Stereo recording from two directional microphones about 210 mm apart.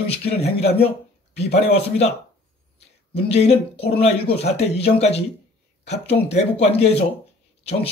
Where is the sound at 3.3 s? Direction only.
30° left (ahead or behind).